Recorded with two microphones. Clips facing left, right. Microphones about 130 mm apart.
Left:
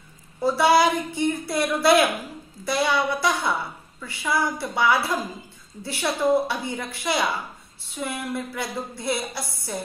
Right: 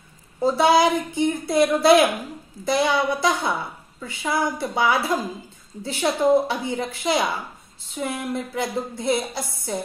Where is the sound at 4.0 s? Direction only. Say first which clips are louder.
Right 1 dB; 20° right (ahead or behind).